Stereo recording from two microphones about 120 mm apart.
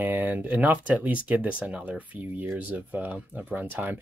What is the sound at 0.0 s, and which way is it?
Speech, 15° right (ahead or behind).